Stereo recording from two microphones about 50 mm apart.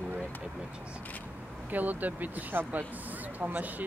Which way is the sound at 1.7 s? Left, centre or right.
Right.